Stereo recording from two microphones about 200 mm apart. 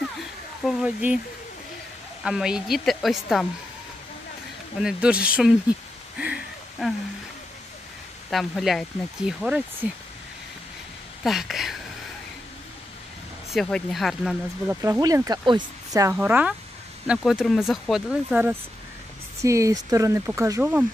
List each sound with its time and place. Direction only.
0.7 s speech: 5° right (ahead or behind)
2.2 s speech: 5° right (ahead or behind)
4.7 s speech: 5° right (ahead or behind)
6.1 s a sound: 5° right (ahead or behind)
8.3 s speech: centre (ahead or behind)
11.2 s speech: centre (ahead or behind)
13.5 s speech: 5° left (ahead or behind)
14.8 s speech: 15° right (ahead or behind)